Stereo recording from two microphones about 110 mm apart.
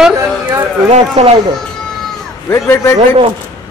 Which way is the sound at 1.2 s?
65° right (ahead or behind).